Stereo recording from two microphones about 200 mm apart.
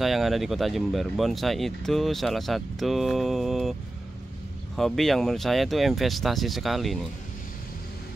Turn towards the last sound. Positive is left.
turn(degrees=0)  # may be behind; listen again after turning